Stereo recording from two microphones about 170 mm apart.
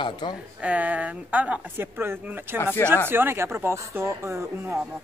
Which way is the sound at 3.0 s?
15° right (ahead or behind).